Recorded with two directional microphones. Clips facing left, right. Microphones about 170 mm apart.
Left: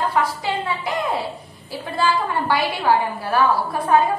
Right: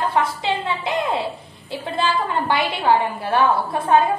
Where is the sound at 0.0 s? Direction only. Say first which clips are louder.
Even; 25° right (ahead or behind).